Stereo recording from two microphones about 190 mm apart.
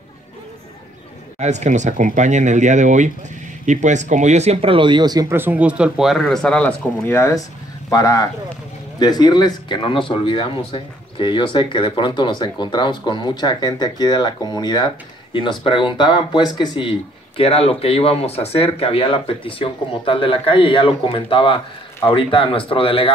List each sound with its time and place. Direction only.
1.4 s speech: 35° right (ahead or behind); by 23.1 s 30° left (ahead or behind)